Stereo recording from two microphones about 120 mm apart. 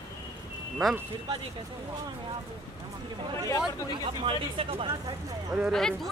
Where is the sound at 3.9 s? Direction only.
45° right (ahead or behind).